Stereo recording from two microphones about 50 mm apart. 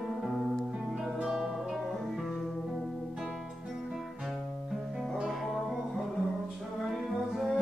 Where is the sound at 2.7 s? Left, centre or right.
Centre.